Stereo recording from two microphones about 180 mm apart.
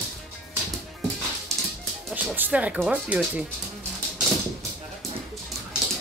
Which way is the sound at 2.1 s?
5° right (ahead or behind).